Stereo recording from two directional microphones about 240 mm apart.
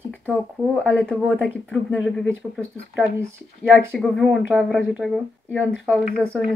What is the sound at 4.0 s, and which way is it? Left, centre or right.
Speech, centre.